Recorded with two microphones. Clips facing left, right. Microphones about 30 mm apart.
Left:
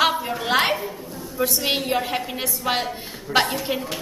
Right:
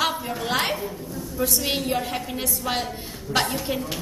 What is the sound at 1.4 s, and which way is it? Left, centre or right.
A woman's voice, centre.